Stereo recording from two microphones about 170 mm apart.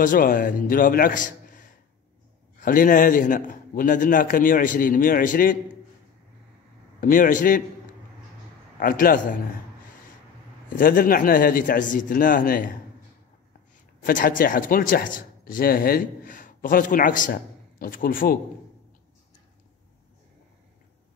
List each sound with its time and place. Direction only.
0.0 s a man's voice: 55° left (ahead or behind)
7.0 s a man's voice: 55° left (ahead or behind)
8.7 s a man's voice: 55° left (ahead or behind)
10.7 s a man's voice: 55° left (ahead or behind)
14.0 s speech: 55° left (ahead or behind)